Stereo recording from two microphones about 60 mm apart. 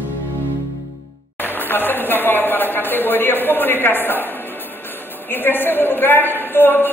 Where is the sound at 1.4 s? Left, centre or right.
Left.